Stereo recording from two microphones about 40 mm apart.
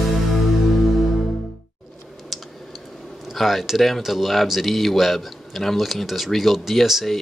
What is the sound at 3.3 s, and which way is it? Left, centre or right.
Speech, centre.